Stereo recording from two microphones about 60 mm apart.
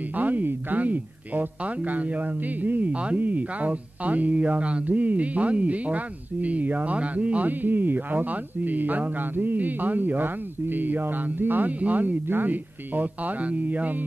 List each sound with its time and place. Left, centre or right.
0.1 s speech: right